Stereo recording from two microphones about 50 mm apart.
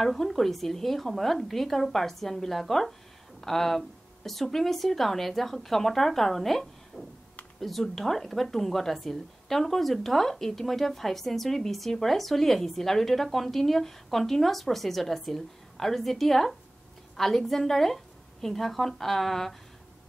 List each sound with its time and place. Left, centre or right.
0.0 s speech: centre